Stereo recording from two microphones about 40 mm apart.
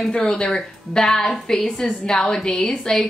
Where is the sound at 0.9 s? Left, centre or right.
Centre.